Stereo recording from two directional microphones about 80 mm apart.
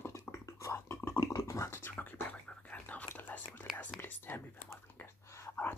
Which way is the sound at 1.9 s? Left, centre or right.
Left.